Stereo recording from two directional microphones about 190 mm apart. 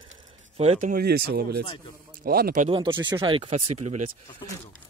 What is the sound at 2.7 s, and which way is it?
Speech, 25° right (ahead or behind).